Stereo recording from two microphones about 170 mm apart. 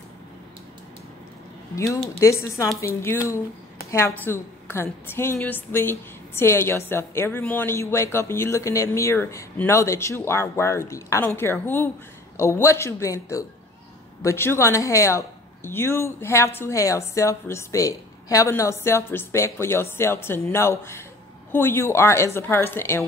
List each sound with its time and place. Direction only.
2.1 s a woman's voice: 15° left (ahead or behind)